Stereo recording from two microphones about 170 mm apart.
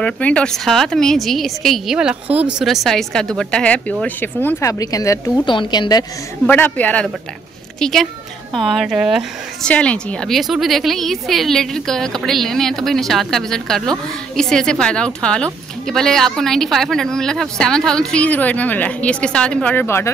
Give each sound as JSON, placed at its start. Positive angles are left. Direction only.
{"t": 0.0, "sound": "speech", "side_deg": 5}
{"t": 6.4, "sound": "speech", "side_deg": 10}